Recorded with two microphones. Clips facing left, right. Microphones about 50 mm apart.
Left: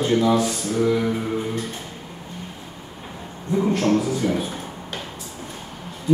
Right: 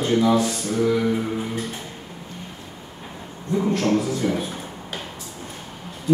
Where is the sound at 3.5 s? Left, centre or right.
Centre.